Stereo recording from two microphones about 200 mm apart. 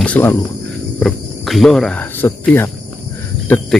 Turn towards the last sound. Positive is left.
turn(degrees=10)  # may be behind; listen again after turning